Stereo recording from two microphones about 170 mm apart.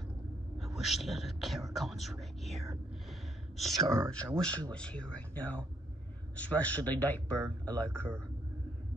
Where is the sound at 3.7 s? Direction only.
20° right (ahead or behind).